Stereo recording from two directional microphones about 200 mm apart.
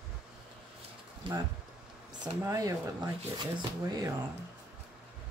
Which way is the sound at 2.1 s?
20° right (ahead or behind).